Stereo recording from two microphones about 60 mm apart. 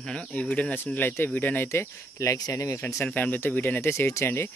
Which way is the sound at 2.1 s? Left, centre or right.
Left.